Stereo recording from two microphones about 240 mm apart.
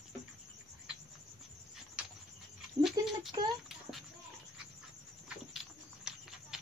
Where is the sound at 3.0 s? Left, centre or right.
Centre.